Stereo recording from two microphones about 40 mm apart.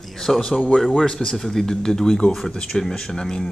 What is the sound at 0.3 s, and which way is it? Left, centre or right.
Speech, centre.